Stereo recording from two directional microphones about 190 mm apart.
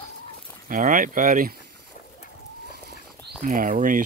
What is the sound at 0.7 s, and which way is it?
Speech, 45° right (ahead or behind).